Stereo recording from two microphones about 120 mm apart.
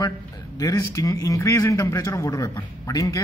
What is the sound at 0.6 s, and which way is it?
A man's voice, 30° left (ahead or behind).